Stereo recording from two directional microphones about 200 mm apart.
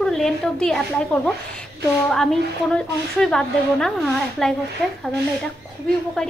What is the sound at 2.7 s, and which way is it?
Speech, 5° left (ahead or behind).